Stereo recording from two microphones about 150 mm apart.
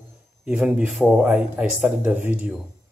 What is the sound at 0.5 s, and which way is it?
A man's voice, 10° right (ahead or behind).